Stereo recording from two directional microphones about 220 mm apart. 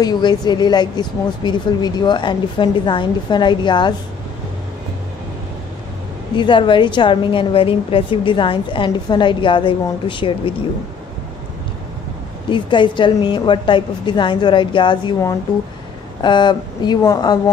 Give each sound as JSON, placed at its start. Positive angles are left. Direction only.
{"t": 0.0, "sound": "a woman's voice", "side_deg": 20}
{"t": 6.3, "sound": "a woman's voice", "side_deg": 20}
{"t": 12.4, "sound": "a woman's voice", "side_deg": 20}